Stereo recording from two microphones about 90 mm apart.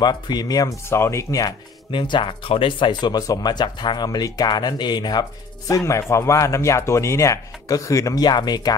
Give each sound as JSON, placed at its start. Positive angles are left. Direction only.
{"t": 0.0, "sound": "speech", "side_deg": 50}
{"t": 0.8, "sound": "speech", "side_deg": 30}
{"t": 1.9, "sound": "speech", "side_deg": 65}
{"t": 5.9, "sound": "speech", "side_deg": 35}
{"t": 8.2, "sound": "speech", "side_deg": 50}